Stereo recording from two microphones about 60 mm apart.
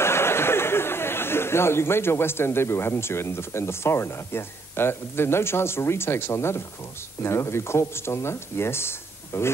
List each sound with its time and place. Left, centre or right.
0.0 s speech: left